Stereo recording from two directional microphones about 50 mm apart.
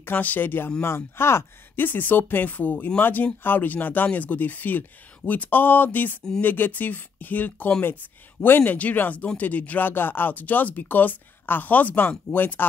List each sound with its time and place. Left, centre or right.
0.0 s speech: left
0.8 s speech: left
1.8 s speech: left